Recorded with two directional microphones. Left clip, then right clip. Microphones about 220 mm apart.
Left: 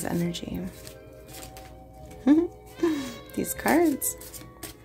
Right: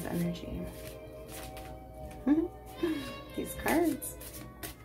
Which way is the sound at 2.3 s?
50° left (ahead or behind).